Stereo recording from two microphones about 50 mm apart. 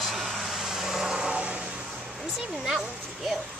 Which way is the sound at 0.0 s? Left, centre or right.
Centre.